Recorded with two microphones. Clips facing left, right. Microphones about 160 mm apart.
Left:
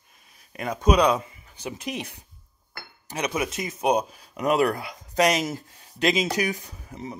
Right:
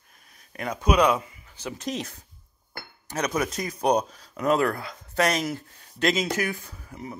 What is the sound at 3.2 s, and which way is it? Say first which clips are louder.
Speech: even; 10° left (ahead or behind).